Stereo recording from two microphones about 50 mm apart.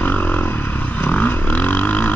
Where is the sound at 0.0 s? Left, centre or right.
Left.